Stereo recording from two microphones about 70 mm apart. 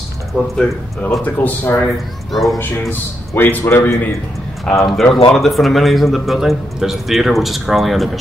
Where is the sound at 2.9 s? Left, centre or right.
Left.